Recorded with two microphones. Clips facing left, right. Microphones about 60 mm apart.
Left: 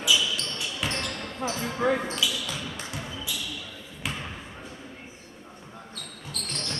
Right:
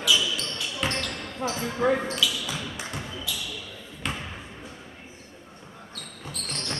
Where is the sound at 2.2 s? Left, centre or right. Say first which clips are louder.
Right 1 dB; centre.